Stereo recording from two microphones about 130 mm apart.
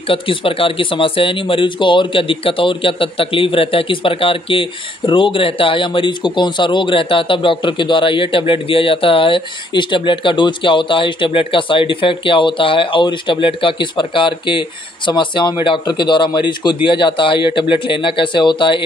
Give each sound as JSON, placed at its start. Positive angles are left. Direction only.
{"t": 0.1, "sound": "speech", "side_deg": 45}